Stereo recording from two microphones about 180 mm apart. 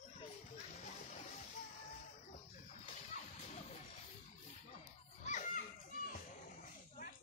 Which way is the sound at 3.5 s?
40° left (ahead or behind).